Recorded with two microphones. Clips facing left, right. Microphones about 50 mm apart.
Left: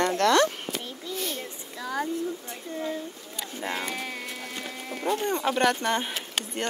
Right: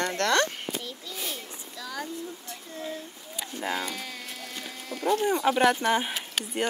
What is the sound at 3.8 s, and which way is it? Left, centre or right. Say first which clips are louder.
Speech: left 2 dB; left.